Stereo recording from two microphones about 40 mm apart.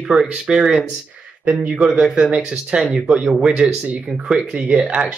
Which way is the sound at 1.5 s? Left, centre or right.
Right.